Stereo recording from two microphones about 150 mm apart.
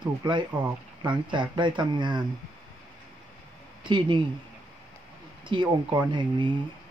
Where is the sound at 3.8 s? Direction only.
30° right (ahead or behind).